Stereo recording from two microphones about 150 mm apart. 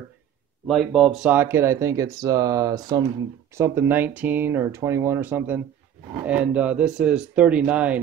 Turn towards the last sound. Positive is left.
turn(degrees=-10)  # may be behind; listen again after turning